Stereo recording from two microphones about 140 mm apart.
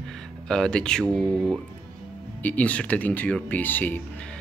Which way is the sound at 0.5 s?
5° left (ahead or behind).